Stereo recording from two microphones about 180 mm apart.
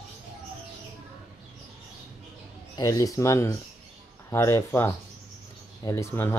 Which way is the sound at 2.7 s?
20° left (ahead or behind).